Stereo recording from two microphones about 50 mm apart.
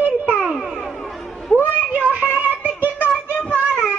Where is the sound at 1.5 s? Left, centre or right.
Right.